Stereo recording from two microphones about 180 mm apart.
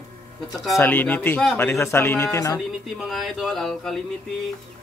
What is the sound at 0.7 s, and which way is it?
Music, 10° left (ahead or behind).